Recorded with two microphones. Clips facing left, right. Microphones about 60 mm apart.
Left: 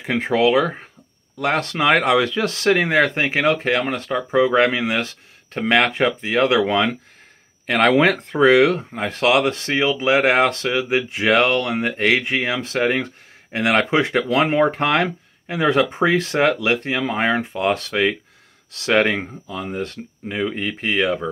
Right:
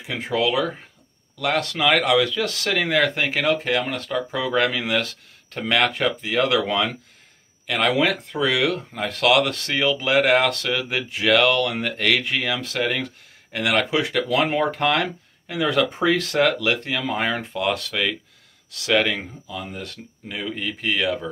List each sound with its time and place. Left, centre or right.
0.0 s speech: left